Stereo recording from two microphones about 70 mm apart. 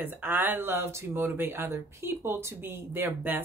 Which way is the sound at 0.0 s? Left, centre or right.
Right.